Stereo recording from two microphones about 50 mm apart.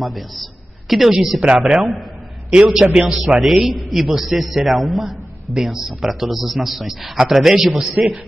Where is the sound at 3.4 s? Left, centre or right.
Centre.